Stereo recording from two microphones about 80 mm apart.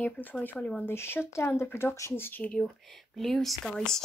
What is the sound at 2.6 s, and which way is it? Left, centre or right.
Speech, centre.